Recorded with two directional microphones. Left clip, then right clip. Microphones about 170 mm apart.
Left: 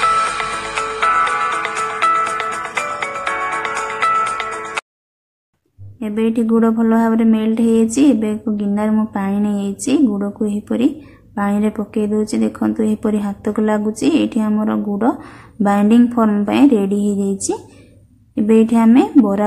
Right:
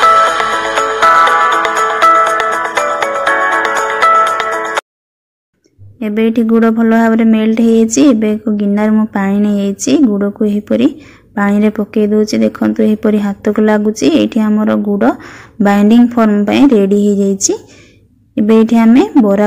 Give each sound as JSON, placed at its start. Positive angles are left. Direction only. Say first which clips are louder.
{"t": 0.0, "sound": "music", "louder": "right 8 dB", "side_deg": -40}
{"t": 5.9, "sound": "a woman's voice", "louder": "right 5 dB", "side_deg": -25}
{"t": 18.7, "sound": "a woman's voice", "louder": "right 4 dB", "side_deg": -20}